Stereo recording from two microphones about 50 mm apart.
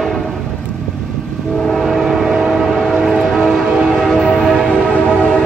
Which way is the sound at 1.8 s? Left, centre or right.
Centre.